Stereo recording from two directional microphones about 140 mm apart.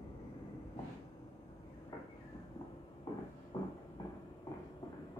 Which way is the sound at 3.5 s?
25° left (ahead or behind).